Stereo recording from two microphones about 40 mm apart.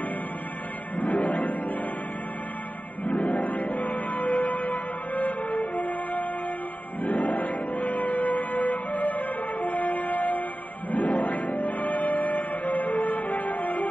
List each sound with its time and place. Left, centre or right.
0.9 s music: left
3.3 s music: left